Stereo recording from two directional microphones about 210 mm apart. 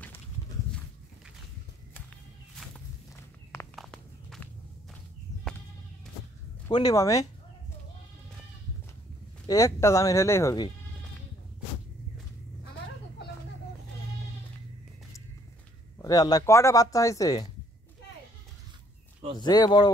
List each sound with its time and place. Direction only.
3.7 s walk: centre (ahead or behind)
5.3 s sheep: 15° left (ahead or behind)
6.7 s speech: 20° left (ahead or behind)
9.5 s speech: 15° left (ahead or behind)
16.0 s speech: 15° left (ahead or behind)
19.4 s speech: 20° left (ahead or behind)